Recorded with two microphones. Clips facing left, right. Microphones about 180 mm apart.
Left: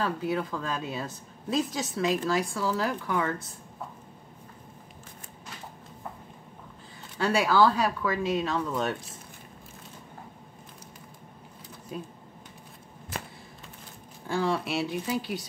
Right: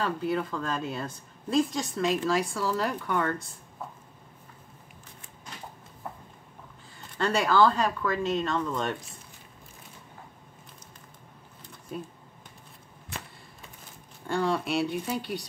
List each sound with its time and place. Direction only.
0.0 s speech: centre (ahead or behind)
7.2 s speech: 5° left (ahead or behind)
14.2 s speech: centre (ahead or behind)